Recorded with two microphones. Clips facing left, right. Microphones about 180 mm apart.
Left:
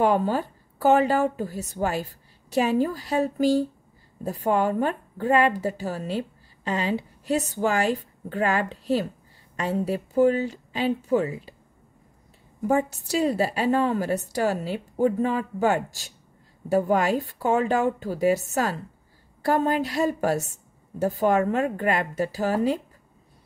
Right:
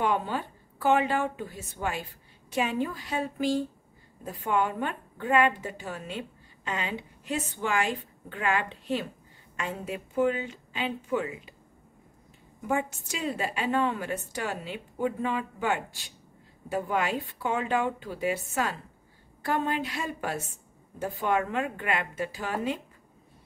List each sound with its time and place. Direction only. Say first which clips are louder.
0.0 s a woman's voice: left 6 dB; 40° left (ahead or behind)
12.6 s a woman's voice: left 6 dB; 40° left (ahead or behind)